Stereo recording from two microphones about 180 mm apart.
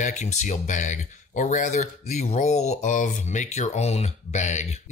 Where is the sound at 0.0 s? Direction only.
40° left (ahead or behind).